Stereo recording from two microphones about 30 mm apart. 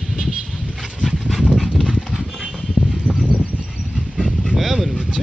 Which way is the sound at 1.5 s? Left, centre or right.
Centre.